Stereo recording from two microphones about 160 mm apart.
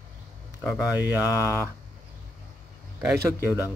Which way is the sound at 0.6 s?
5° right (ahead or behind).